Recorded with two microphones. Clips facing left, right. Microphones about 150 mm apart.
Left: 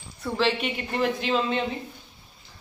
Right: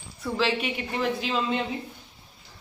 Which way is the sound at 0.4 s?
5° right (ahead or behind).